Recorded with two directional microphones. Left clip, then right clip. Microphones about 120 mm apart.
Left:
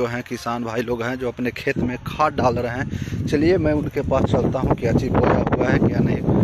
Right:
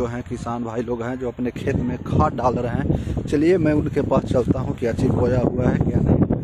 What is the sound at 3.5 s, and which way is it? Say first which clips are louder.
Speech: right 1 dB; 50° right (ahead or behind).